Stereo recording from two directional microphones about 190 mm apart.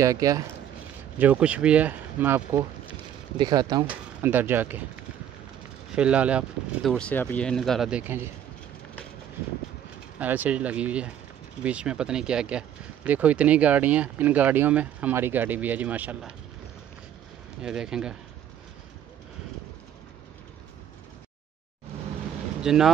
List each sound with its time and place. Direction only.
0.0 s speech: 20° right (ahead or behind)
3.3 s speech: 20° right (ahead or behind)
3.9 s speech: 10° right (ahead or behind)
5.9 s speech: 5° right (ahead or behind)
10.1 s speech: 10° right (ahead or behind)
17.6 s speech: 5° right (ahead or behind)
22.6 s speech: centre (ahead or behind)